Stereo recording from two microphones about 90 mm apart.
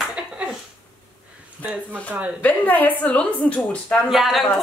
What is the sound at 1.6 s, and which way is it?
Speech, 15° left (ahead or behind).